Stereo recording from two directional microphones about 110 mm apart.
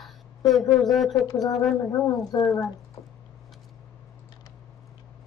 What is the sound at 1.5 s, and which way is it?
Speech, centre (ahead or behind).